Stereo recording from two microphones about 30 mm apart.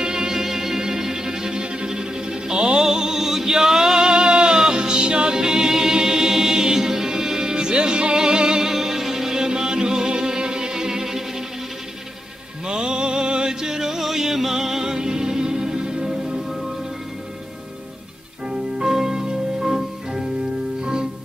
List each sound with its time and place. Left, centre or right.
0.0 s music: right
2.8 s music: right
8.7 s music: centre
12.6 s music: right
13.6 s music: centre
18.8 s music: centre